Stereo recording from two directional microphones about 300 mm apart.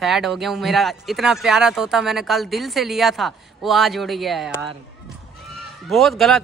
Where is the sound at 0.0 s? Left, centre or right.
Centre.